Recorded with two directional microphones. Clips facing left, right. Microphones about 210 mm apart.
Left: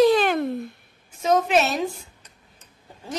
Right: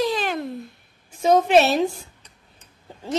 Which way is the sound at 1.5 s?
35° right (ahead or behind).